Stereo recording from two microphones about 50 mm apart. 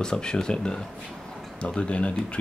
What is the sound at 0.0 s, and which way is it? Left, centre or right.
Speech, centre.